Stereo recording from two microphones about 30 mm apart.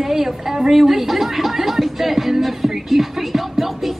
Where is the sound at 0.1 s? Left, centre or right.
Centre.